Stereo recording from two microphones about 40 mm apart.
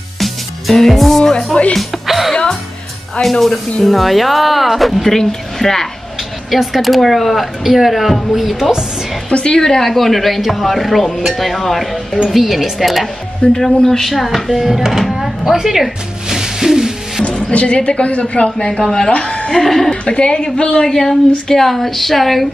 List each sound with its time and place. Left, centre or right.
0.2 s music: centre
3.2 s speech: centre
5.1 s speech: centre
9.3 s a woman's voice: left; by 16.9 s centre
17.4 s a woman's voice: left
19.1 s a woman's voice: left
19.5 s speech: centre
20.2 s a woman's voice: left; by 22.5 s centre